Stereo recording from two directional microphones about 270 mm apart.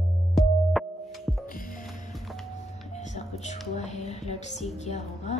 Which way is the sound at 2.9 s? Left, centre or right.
Left.